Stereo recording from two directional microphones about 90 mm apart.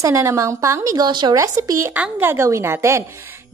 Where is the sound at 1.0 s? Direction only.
55° right (ahead or behind).